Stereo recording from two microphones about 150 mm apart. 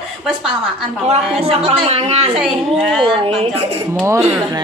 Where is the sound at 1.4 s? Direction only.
40° right (ahead or behind).